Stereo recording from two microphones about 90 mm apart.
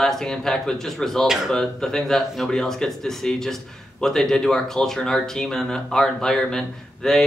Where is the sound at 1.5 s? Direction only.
5° left (ahead or behind).